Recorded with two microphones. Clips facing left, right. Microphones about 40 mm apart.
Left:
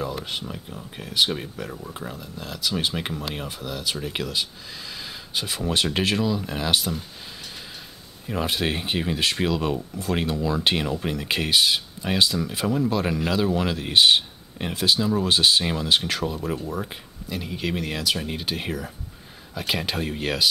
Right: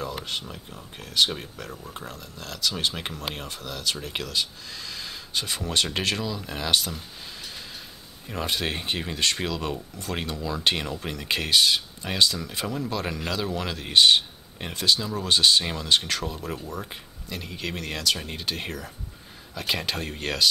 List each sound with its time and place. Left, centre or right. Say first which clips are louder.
0.0 s speech: left 2 dB; centre
8.3 s speech: left 3 dB; centre